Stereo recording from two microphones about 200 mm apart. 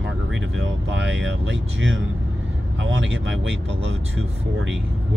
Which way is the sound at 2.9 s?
65° right (ahead or behind).